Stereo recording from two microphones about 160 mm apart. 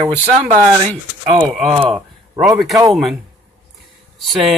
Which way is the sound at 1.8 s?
5° right (ahead or behind).